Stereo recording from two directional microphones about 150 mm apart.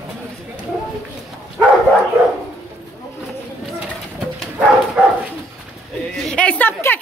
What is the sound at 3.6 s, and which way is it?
Bird, 5° right (ahead or behind).